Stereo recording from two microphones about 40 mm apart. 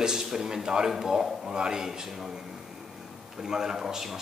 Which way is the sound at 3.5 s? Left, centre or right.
Centre.